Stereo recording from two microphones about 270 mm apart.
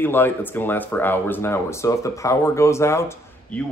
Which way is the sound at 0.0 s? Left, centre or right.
Centre.